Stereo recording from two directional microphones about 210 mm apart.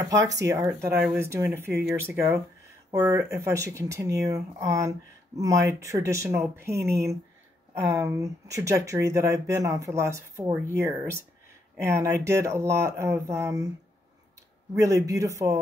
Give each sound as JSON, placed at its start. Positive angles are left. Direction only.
{"t": 0.5, "sound": "speech", "side_deg": -15}
{"t": 14.8, "sound": "speech", "side_deg": -15}